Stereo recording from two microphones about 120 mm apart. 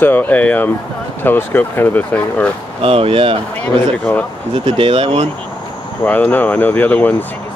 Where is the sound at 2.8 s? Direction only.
50° right (ahead or behind).